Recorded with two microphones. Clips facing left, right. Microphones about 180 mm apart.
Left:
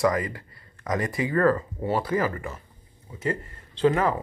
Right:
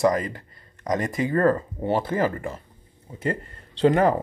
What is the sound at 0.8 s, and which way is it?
Speech, 20° right (ahead or behind).